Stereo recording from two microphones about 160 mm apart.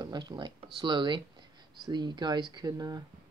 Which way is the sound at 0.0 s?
25° right (ahead or behind).